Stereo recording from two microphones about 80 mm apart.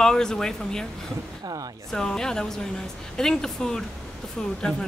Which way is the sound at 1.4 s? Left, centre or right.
Right.